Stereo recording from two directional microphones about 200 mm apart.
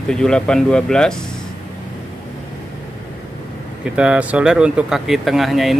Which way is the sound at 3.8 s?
5° right (ahead or behind).